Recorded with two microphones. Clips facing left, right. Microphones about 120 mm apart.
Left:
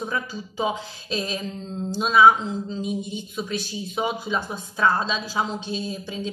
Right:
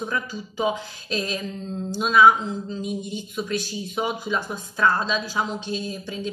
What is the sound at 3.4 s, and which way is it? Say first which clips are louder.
Speech: right 2 dB; 20° left (ahead or behind).